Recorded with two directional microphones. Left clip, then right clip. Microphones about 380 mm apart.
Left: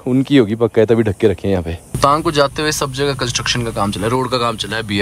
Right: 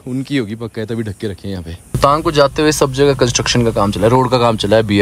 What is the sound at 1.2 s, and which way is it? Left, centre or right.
Speech, centre.